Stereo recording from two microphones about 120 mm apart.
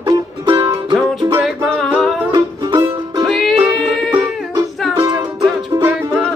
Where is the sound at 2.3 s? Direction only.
35° right (ahead or behind).